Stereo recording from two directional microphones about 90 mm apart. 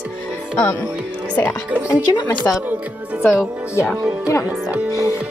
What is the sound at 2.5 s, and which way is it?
Speech, 30° left (ahead or behind).